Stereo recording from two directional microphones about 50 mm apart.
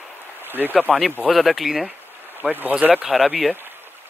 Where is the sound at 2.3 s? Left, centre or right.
Right.